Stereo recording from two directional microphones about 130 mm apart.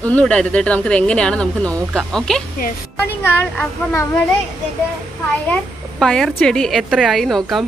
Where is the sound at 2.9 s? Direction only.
15° left (ahead or behind).